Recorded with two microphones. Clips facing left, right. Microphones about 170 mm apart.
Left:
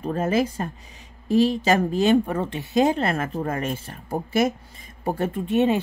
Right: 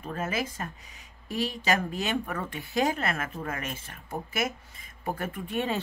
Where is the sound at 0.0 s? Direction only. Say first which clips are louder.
Left 9 dB; 30° left (ahead or behind).